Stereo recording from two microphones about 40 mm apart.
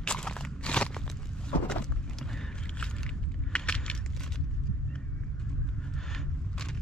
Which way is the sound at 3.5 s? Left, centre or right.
Left.